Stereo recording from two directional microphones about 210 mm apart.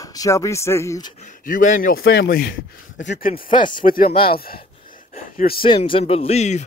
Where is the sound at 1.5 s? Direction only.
40° left (ahead or behind).